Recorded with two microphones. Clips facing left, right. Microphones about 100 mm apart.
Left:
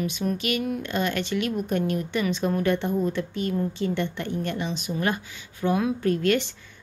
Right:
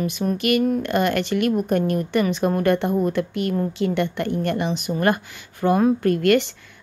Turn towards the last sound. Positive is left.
turn(degrees=-60)  # may be behind; listen again after turning